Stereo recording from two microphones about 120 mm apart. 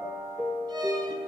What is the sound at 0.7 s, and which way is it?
Music, 35° right (ahead or behind).